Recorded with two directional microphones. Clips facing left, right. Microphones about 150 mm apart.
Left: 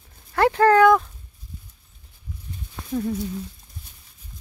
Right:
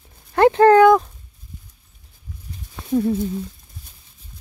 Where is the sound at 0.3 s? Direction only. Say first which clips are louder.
Right 5 dB; 25° right (ahead or behind).